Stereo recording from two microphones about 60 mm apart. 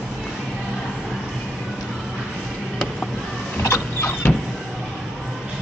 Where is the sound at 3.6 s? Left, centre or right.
Left.